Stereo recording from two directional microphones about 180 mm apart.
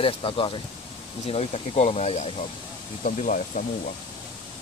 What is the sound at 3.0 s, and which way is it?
Speech, 45° left (ahead or behind).